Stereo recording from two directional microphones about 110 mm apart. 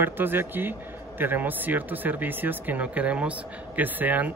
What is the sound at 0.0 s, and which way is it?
Speech, 20° right (ahead or behind).